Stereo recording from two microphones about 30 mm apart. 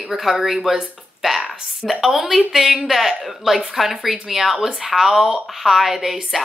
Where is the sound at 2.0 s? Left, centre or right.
Centre.